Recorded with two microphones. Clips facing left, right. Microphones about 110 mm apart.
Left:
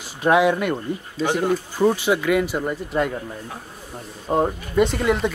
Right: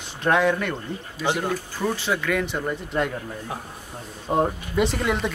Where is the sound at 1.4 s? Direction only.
15° left (ahead or behind).